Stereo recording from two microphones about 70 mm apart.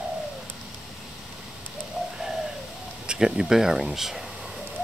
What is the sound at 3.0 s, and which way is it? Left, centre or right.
Speech, centre.